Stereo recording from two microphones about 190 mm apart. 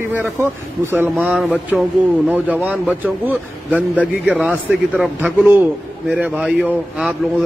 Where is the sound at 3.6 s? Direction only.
5° left (ahead or behind).